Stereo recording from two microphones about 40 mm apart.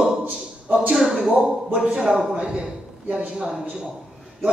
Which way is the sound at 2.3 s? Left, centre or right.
Right.